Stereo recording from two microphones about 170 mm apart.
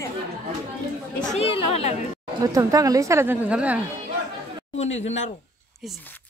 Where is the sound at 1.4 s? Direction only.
35° left (ahead or behind).